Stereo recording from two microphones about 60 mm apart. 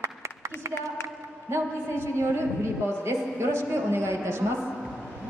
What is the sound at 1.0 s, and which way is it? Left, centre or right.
A woman's voice, right.